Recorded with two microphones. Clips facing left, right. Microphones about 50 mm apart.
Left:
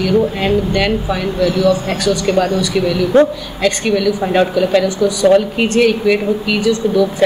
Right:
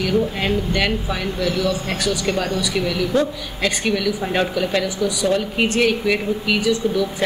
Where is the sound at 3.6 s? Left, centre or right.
Centre.